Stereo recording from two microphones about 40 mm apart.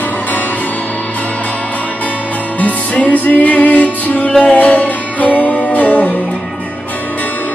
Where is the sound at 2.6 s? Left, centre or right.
Left.